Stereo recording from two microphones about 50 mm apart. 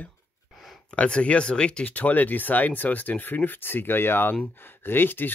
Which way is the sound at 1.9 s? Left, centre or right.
Left.